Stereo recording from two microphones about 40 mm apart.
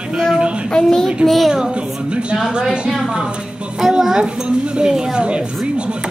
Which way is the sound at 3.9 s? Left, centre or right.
Right.